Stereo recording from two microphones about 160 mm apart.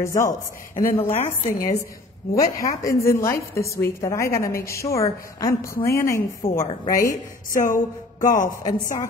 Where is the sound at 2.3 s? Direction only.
20° left (ahead or behind).